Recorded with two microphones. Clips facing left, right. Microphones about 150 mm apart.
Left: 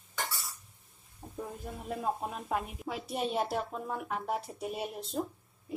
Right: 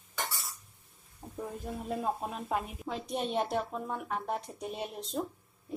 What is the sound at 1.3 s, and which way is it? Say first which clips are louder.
Speech: right 2 dB; centre (ahead or behind).